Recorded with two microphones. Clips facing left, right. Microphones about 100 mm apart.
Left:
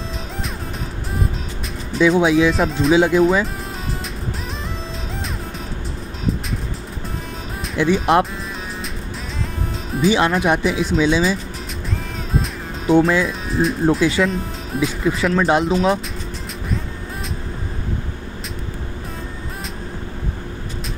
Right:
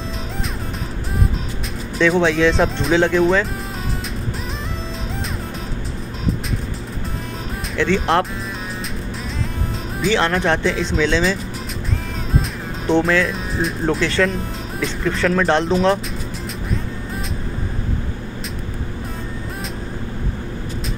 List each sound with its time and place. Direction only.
2.0 s speech: 10° left (ahead or behind)
7.7 s speech: 15° left (ahead or behind)
10.3 s speech: 10° left (ahead or behind)
12.4 s music: centre (ahead or behind)
13.3 s speech: centre (ahead or behind)